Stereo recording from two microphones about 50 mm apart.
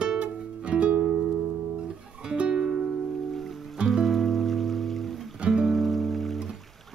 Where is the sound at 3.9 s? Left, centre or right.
Centre.